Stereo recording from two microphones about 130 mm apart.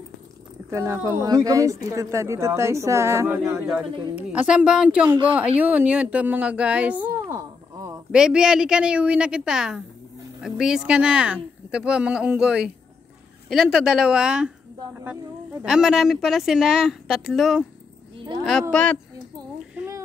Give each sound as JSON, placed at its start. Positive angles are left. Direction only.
{"t": 0.7, "sound": "speech", "side_deg": -25}
{"t": 3.4, "sound": "speech", "side_deg": -5}
{"t": 7.2, "sound": "a sound", "side_deg": -25}
{"t": 8.1, "sound": "speech", "side_deg": -5}
{"t": 15.6, "sound": "speech", "side_deg": 0}
{"t": 18.1, "sound": "a sound", "side_deg": -35}
{"t": 18.4, "sound": "speech", "side_deg": 0}